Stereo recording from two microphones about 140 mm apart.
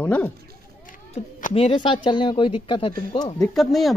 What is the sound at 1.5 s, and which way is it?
Speech, 40° left (ahead or behind).